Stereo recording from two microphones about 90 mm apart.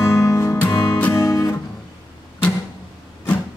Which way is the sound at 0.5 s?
20° left (ahead or behind).